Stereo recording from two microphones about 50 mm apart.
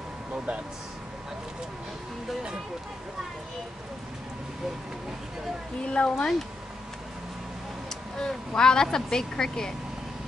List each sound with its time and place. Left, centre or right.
5.9 s speech: left
8.2 s speech: centre